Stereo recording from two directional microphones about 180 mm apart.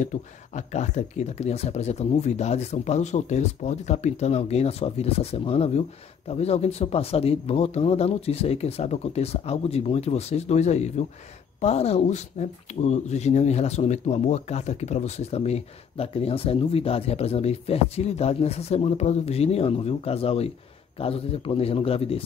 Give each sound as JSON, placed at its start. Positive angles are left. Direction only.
{"t": 0.0, "sound": "speech", "side_deg": 40}